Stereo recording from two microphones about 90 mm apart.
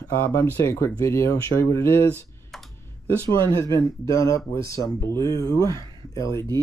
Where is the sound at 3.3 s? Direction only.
35° left (ahead or behind).